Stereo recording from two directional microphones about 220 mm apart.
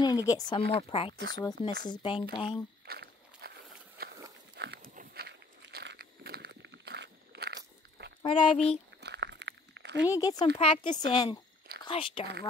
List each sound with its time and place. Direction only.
0.0 s speech: 15° left (ahead or behind)
2.9 s walk: 45° right (ahead or behind)
4.0 s horse: 45° right (ahead or behind)
4.6 s walk: 45° right (ahead or behind)
8.2 s speech: 20° left (ahead or behind)
9.0 s a sound: 50° right (ahead or behind)
10.0 s speech: 15° left (ahead or behind)